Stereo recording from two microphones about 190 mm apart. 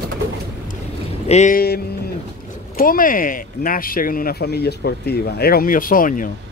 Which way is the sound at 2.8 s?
50° left (ahead or behind).